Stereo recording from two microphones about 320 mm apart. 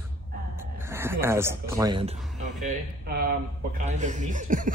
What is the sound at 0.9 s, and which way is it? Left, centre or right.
Speech, centre.